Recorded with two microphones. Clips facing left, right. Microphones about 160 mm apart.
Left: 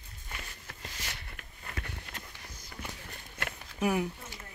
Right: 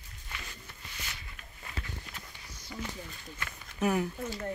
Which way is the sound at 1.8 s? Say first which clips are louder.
Left 1 dB; 60° left (ahead or behind).